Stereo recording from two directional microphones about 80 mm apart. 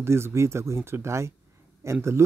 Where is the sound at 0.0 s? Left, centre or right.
Right.